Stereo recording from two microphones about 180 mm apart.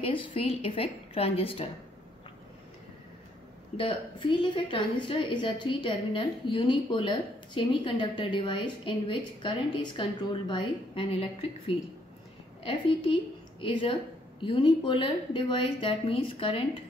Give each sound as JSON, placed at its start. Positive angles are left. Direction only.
{"t": 0.0, "sound": "a woman's voice", "side_deg": 30}
{"t": 3.7, "sound": "a woman's voice", "side_deg": 30}